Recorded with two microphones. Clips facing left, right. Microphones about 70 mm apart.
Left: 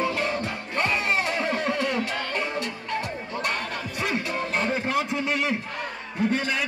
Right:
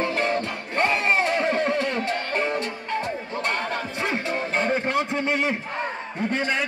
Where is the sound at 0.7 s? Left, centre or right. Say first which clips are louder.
Right 3 dB; right.